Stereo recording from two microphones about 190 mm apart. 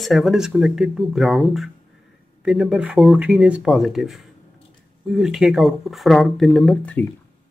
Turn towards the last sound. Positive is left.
turn(degrees=5)  # may be behind; listen again after turning